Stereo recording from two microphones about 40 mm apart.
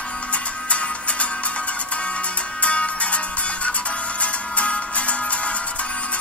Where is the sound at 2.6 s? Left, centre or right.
Left.